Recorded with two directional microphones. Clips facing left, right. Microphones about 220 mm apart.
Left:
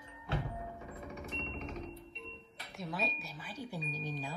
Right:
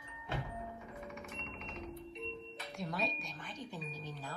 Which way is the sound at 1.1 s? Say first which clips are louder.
Left 4 dB; 35° left (ahead or behind).